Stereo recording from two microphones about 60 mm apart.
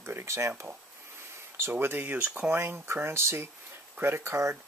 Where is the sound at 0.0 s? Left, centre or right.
Right.